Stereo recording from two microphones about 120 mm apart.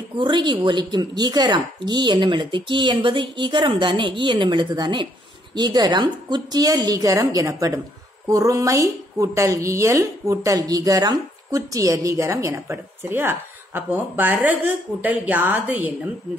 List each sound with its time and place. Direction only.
0.1 s a woman's voice: 40° right (ahead or behind); by 16.1 s 15° right (ahead or behind)